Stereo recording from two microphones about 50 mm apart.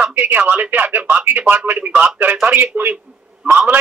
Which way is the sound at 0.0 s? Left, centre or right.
Right.